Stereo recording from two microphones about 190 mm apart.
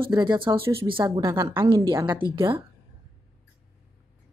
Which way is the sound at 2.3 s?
25° right (ahead or behind).